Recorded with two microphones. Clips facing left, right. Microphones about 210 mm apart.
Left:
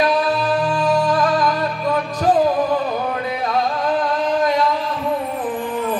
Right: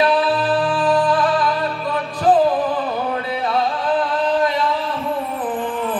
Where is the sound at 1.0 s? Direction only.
45° left (ahead or behind).